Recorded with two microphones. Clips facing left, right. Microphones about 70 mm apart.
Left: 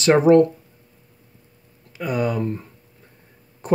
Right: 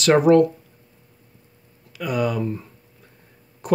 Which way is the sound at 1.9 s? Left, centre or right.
Left.